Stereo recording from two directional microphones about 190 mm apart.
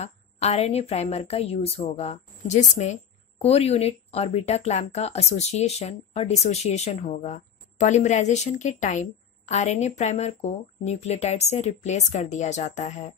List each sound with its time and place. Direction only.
0.0 s speech: 35° left (ahead or behind)